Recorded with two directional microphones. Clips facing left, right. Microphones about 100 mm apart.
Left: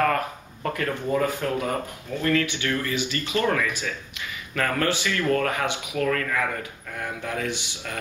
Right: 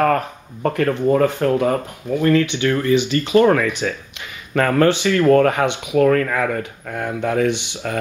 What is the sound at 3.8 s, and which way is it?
Speech, 65° right (ahead or behind).